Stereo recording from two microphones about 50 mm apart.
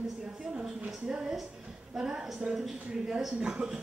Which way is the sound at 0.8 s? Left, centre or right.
Centre.